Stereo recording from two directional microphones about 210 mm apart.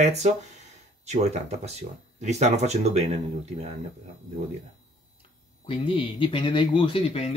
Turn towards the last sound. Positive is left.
turn(degrees=25)  # may be behind; listen again after turning